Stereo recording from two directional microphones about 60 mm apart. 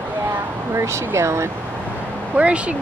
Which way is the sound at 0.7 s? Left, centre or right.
Right.